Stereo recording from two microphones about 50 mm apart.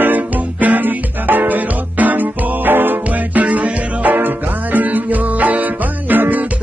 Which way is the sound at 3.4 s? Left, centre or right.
Right.